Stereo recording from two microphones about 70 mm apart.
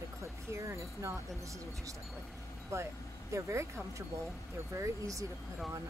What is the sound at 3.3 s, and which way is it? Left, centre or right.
Wind chime, right.